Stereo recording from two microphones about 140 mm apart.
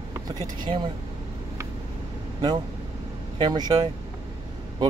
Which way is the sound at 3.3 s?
30° right (ahead or behind).